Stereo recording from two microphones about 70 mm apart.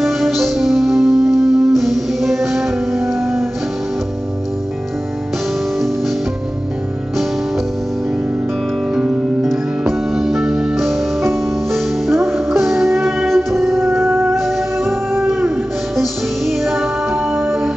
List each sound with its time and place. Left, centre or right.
0.0 s music: centre
8.9 s music: centre
9.4 s music: centre
13.9 s music: right
14.3 s music: centre